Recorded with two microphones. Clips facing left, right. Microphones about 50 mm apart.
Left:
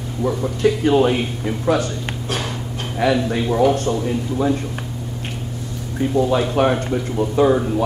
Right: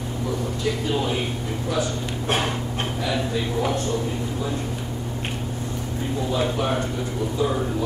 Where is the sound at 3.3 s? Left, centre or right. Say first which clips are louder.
Left 7 dB; left.